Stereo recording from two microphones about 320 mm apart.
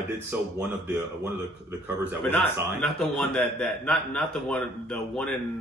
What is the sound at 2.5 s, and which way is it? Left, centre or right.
A man's voice, centre.